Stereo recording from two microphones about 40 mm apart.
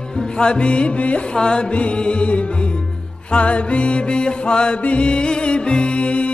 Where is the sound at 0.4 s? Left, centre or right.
Left.